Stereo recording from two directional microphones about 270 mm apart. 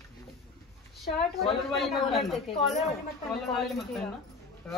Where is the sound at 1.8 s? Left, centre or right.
Centre.